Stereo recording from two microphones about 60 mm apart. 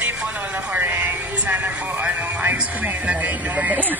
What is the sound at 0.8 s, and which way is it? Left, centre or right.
Speech, right.